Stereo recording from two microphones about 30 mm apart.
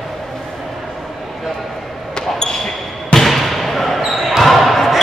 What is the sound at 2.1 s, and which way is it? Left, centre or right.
Basketball bounce, left.